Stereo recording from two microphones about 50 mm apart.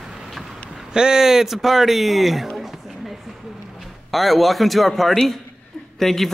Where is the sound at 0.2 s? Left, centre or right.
Centre.